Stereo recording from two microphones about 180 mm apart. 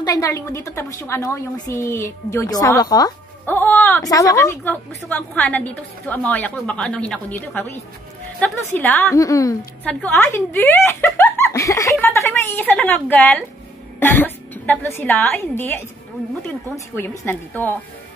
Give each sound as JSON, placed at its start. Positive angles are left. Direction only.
{"t": 0.0, "sound": "a woman's voice", "side_deg": 20}